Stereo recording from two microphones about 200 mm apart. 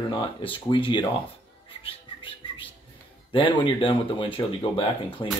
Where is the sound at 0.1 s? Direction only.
25° left (ahead or behind).